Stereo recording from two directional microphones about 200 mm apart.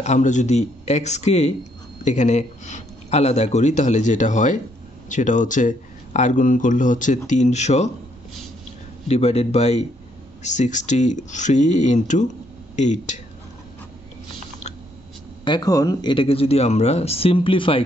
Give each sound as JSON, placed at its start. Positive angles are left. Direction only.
{"t": 0.0, "sound": "speech", "side_deg": 35}
{"t": 9.0, "sound": "speech", "side_deg": 30}
{"t": 15.4, "sound": "speech", "side_deg": 20}